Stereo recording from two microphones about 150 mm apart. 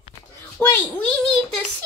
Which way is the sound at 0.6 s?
10° left (ahead or behind).